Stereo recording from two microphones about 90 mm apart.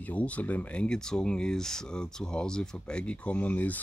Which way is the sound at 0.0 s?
15° left (ahead or behind).